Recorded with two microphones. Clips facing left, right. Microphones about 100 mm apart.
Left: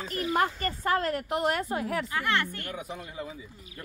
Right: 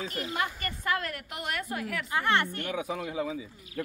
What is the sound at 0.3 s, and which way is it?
A woman's voice, 35° left (ahead or behind).